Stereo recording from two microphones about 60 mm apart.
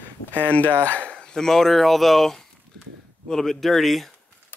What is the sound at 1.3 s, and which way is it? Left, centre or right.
Speech, centre.